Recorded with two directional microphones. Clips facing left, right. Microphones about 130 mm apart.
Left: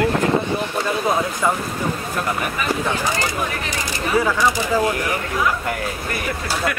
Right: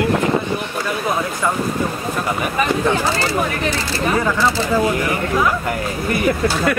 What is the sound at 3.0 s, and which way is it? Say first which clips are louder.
Speech: right 4 dB; 15° left (ahead or behind).